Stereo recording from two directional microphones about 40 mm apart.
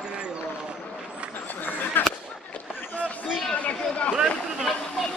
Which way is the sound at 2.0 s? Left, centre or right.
Left.